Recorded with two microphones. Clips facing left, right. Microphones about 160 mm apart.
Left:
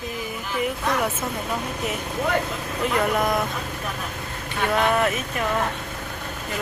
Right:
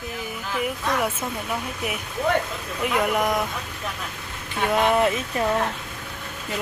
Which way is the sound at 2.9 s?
15° right (ahead or behind).